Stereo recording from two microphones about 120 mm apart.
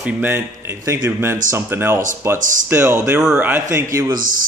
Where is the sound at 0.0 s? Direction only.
15° right (ahead or behind).